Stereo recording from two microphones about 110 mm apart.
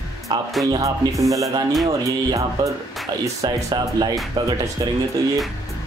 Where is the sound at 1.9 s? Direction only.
30° right (ahead or behind).